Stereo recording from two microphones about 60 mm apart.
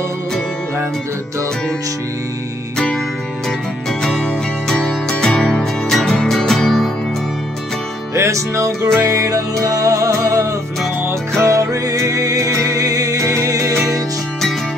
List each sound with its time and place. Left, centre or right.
4.0 s music: centre
8.1 s music: right